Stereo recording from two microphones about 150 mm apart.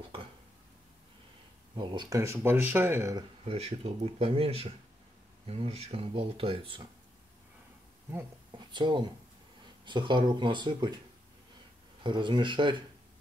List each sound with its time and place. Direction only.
1.8 s speech: 30° right (ahead or behind)
3.4 s speech: 40° right (ahead or behind)
8.5 s speech: 30° right (ahead or behind)
12.0 s speech: 30° right (ahead or behind)